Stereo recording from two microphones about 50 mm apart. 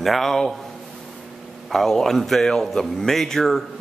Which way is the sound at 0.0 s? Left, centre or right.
Centre.